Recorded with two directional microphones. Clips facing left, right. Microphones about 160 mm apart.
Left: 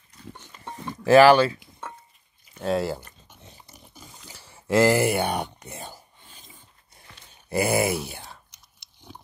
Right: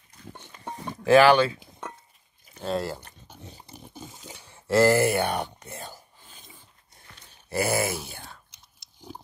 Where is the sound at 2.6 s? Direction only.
10° left (ahead or behind).